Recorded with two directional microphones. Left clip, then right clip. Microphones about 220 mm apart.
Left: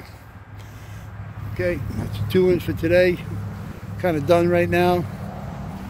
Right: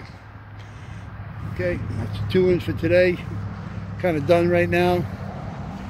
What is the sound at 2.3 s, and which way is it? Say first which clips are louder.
Speech: left 1 dB; 5° left (ahead or behind).